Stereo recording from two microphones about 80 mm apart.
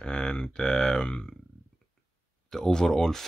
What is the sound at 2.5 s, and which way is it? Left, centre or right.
Speech, centre.